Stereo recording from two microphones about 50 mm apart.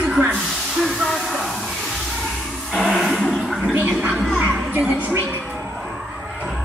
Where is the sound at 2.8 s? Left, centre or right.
Centre.